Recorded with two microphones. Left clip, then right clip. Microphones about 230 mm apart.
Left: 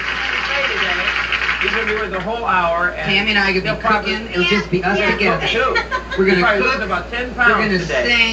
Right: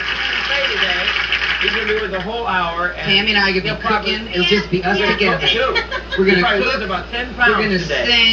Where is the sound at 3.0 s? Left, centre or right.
Centre.